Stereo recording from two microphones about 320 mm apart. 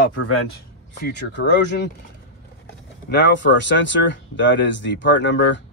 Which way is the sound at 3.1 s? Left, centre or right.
Left.